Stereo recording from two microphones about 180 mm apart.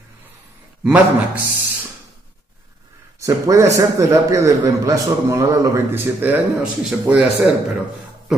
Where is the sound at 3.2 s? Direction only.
15° right (ahead or behind).